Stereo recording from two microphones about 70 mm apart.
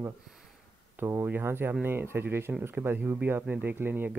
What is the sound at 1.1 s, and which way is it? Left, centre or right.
Speech, right.